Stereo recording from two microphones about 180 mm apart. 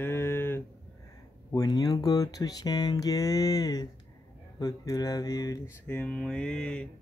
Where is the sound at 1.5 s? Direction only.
20° left (ahead or behind).